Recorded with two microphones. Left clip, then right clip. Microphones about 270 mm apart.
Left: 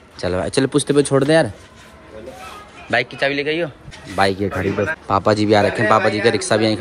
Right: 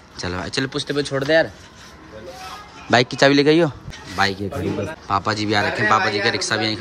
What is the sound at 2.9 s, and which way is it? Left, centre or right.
Speech, centre.